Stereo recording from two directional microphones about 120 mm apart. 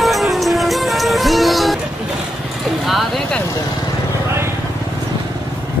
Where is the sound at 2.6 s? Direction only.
Centre (ahead or behind).